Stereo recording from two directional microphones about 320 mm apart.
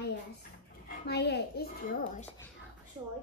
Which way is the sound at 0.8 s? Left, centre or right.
Left.